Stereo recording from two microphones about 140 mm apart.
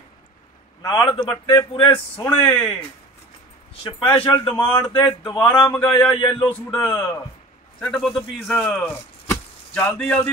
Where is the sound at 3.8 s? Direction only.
40° left (ahead or behind).